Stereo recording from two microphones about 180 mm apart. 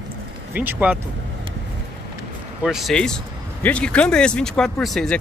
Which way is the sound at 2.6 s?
Centre (ahead or behind).